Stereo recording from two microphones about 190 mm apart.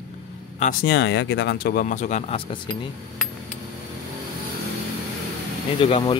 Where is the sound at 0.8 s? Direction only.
65° left (ahead or behind); by 2.6 s 30° left (ahead or behind).